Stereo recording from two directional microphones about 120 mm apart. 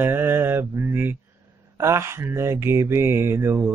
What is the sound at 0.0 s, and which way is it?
Mantra, 20° right (ahead or behind).